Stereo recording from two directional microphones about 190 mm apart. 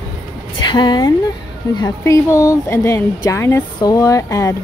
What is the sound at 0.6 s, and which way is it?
Speech, 25° left (ahead or behind).